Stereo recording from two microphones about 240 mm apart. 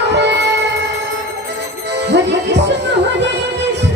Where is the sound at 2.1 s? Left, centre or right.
Right.